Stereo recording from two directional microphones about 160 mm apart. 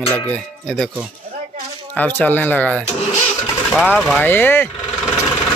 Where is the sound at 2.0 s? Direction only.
10° left (ahead or behind).